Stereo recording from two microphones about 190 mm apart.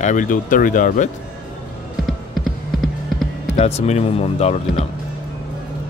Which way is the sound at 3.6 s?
35° left (ahead or behind).